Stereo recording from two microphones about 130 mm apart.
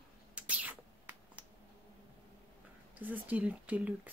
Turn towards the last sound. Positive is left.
turn(degrees=-10)  # may be behind; listen again after turning